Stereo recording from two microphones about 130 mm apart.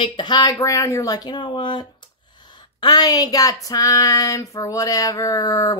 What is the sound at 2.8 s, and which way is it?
Female singing, 30° left (ahead or behind).